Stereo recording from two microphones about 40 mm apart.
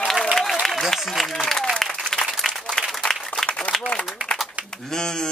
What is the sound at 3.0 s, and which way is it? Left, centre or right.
Applause, centre.